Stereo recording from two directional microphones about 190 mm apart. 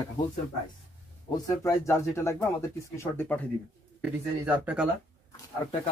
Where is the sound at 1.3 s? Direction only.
15° left (ahead or behind).